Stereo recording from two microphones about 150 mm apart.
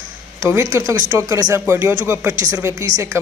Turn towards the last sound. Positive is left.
turn(degrees=-20)  # may be behind; listen again after turning